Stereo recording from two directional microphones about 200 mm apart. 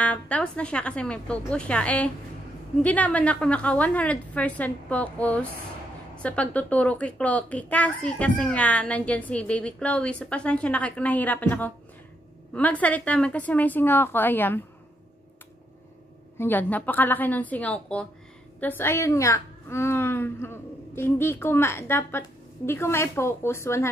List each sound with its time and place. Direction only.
0.0 s a woman's voice: 5° left (ahead or behind)
16.3 s a woman's voice: 10° left (ahead or behind)